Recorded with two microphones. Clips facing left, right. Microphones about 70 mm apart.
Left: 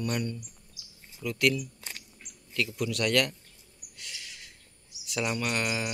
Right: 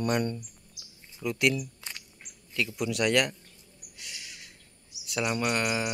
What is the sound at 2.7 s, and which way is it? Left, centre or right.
Speech, centre.